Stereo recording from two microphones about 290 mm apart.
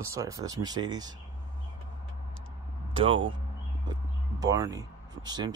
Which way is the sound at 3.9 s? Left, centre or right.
Centre.